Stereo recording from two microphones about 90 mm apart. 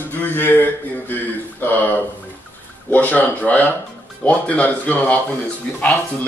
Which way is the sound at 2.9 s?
20° left (ahead or behind).